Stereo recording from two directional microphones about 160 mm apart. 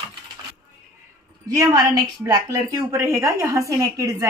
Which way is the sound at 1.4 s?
20° right (ahead or behind).